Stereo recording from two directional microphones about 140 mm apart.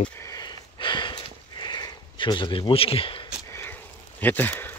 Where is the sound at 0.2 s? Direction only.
25° left (ahead or behind).